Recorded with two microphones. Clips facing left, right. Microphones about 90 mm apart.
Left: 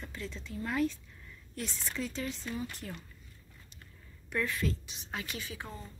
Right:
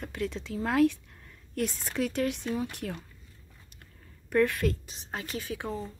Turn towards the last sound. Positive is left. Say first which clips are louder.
# right 9 dB
turn(degrees=-70)  # may be behind; listen again after turning